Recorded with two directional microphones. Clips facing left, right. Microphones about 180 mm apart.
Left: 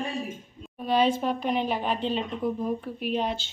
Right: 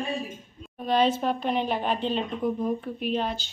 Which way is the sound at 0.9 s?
10° left (ahead or behind).